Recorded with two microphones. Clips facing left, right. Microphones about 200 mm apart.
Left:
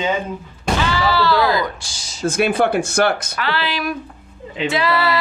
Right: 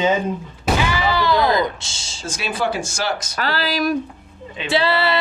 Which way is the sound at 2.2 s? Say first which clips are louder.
Left 7 dB; 55° left (ahead or behind).